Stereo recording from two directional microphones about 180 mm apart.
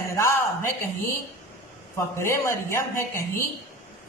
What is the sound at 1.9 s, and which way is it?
A man's voice, 15° left (ahead or behind).